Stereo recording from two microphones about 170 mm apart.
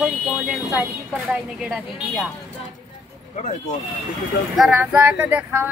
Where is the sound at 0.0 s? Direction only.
Centre (ahead or behind).